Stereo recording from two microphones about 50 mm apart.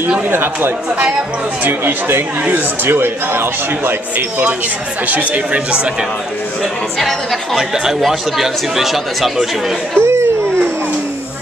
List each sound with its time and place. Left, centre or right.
0.3 s a man's voice: right
5.0 s speech: right
7.5 s speech: centre
10.0 s a sound: right